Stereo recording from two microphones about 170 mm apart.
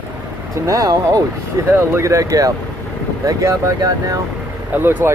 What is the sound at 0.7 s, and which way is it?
Speech, 20° right (ahead or behind).